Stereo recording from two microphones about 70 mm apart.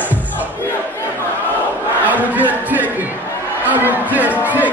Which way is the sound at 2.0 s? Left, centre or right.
Right.